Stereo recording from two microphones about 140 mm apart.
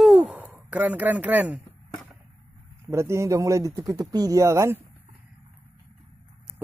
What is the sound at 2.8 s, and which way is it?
Speech, 20° right (ahead or behind).